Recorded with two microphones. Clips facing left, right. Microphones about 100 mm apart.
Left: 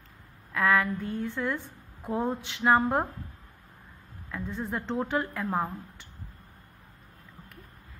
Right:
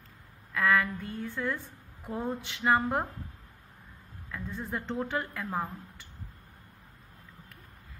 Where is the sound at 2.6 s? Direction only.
20° left (ahead or behind).